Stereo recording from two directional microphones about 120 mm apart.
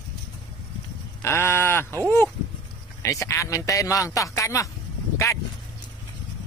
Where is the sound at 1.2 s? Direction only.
20° left (ahead or behind).